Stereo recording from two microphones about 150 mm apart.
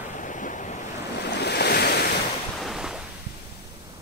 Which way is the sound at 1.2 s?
90° left.